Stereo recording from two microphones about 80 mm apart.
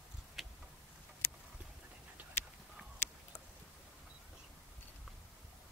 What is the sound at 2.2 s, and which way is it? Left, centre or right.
Dog, right.